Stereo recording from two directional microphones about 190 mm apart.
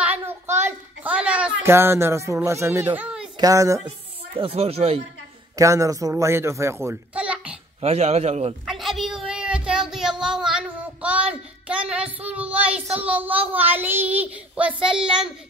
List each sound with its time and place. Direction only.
0.0 s a sound: 10° right (ahead or behind)
3.3 s a woman's voice: 15° right (ahead or behind)
4.4 s speech: 30° right (ahead or behind)
5.6 s a child's voice: 15° right (ahead or behind)
7.8 s speech: 35° right (ahead or behind)
8.6 s a sound: centre (ahead or behind)